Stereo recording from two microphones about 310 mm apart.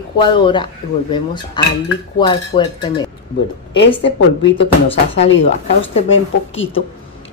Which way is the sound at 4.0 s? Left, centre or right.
Left.